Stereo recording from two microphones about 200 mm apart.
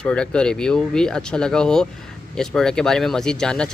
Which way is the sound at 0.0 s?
5° left (ahead or behind).